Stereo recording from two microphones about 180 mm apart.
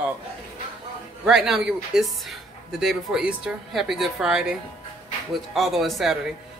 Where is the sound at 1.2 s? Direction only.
Centre (ahead or behind).